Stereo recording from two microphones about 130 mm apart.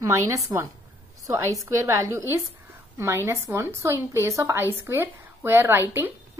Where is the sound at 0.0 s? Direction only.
25° right (ahead or behind).